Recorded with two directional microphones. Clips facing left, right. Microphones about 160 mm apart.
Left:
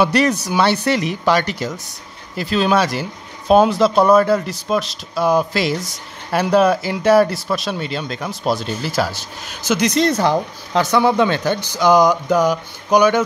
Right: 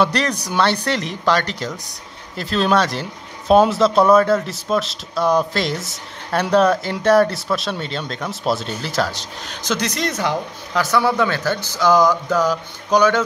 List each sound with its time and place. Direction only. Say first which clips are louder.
0.0 s speech: left 3 dB; 10° left (ahead or behind)
9.8 s speech: left 9 dB; 30° left (ahead or behind)
10.8 s speech: left 3 dB; 20° left (ahead or behind)